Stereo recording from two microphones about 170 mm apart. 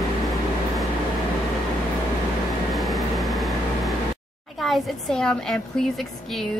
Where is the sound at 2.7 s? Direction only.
Centre (ahead or behind).